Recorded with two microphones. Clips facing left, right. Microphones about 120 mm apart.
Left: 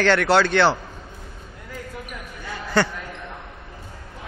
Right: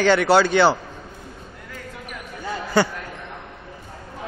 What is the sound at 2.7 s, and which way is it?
Speech, 5° right (ahead or behind).